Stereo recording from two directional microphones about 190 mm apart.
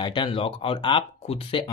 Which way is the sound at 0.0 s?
25° left (ahead or behind).